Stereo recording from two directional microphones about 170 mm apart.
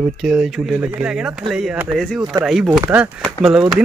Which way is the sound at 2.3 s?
20° right (ahead or behind).